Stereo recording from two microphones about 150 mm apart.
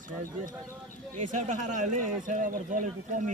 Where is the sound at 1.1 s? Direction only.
55° right (ahead or behind).